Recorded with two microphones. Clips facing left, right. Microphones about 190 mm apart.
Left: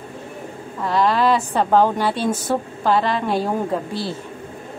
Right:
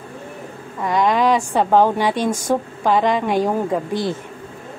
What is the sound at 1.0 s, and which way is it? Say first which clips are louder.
A woman's voice: right 1 dB; 15° right (ahead or behind).